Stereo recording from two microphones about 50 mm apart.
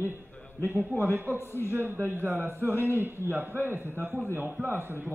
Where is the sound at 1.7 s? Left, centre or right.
Right.